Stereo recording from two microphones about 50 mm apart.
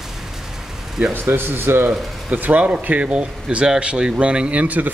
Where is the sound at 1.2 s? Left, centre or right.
Right.